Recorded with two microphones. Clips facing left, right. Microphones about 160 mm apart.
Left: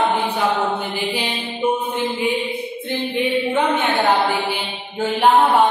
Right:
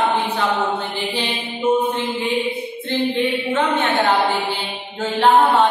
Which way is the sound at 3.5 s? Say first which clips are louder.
Even; 10° left (ahead or behind).